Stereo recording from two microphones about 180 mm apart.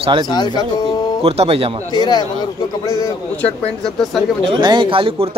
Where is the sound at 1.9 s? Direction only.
25° left (ahead or behind).